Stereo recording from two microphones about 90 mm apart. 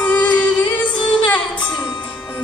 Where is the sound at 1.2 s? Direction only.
60° left (ahead or behind).